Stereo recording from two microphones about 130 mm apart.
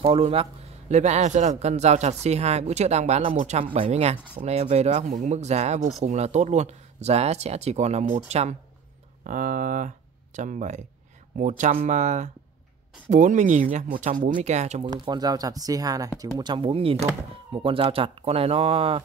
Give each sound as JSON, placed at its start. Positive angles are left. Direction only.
{"t": 0.0, "sound": "a man's voice", "side_deg": -45}
{"t": 3.6, "sound": "a man's voice", "side_deg": -45}
{"t": 9.2, "sound": "a man's voice", "side_deg": -90}
{"t": 14.8, "sound": "speech", "side_deg": -35}
{"t": 16.5, "sound": "speech", "side_deg": -45}